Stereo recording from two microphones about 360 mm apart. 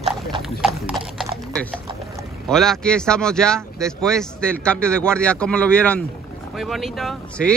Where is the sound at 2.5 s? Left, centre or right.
Centre.